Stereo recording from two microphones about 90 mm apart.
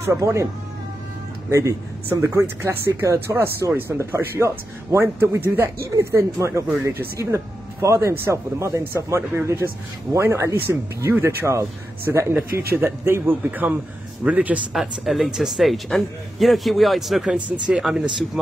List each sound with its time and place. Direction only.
0.0 s a man's voice: 30° right (ahead or behind)
1.5 s a man's voice: 35° right (ahead or behind); by 14.6 s 15° right (ahead or behind)
14.7 s speech: 5° right (ahead or behind)